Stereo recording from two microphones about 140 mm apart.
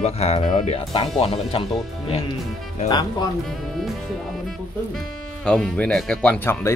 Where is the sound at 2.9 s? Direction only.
30° left (ahead or behind).